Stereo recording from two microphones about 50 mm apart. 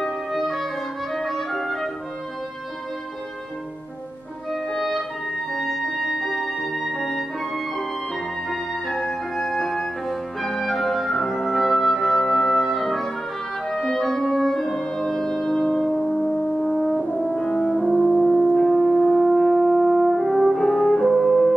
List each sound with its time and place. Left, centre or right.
0.0 s music: centre
1.1 s clarinet: centre
4.7 s music: centre
13.7 s clarinet: centre
14.3 s brass instrument: centre
16.6 s french horn: centre
17.3 s french horn: left
17.7 s french horn: centre
18.1 s music: centre